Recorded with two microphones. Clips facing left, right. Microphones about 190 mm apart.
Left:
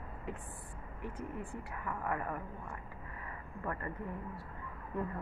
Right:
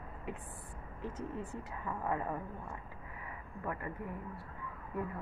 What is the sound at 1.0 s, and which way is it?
A woman's voice, 20° right (ahead or behind).